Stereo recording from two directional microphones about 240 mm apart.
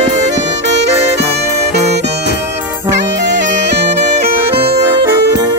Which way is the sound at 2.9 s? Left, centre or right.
Right.